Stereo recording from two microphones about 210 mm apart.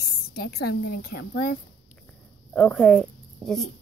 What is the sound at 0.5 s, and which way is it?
Speech, 50° left (ahead or behind).